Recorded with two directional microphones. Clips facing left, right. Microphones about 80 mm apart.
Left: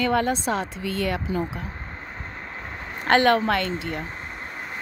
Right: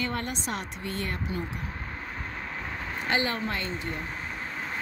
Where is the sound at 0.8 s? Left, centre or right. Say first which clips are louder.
Left 7 dB; left.